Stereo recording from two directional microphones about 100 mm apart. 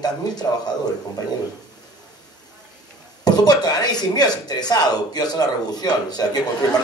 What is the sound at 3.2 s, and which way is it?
A man's voice, 40° left (ahead or behind).